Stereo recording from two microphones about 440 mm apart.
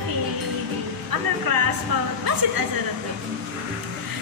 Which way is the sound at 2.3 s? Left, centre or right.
Right.